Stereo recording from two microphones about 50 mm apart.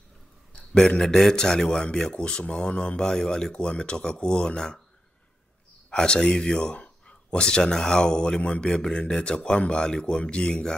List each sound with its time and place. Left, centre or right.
0.5 s speech: centre
5.9 s speech: centre